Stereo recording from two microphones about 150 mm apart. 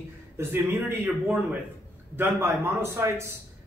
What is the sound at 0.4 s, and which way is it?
Speech, 15° right (ahead or behind).